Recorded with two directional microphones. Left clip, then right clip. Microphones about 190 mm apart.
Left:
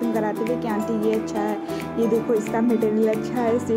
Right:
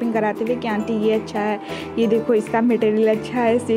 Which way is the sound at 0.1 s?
35° right (ahead or behind).